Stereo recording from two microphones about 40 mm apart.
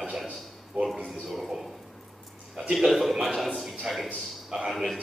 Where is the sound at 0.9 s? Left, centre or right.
Centre.